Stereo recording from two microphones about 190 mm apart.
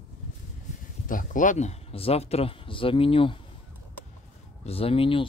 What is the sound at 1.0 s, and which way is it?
Speech, 45° left (ahead or behind).